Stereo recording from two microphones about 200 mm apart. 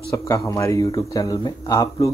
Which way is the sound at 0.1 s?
15° left (ahead or behind).